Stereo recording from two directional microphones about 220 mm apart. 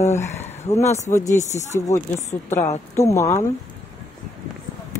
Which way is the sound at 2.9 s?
15° left (ahead or behind).